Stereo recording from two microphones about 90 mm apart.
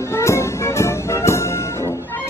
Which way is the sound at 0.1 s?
30° left (ahead or behind).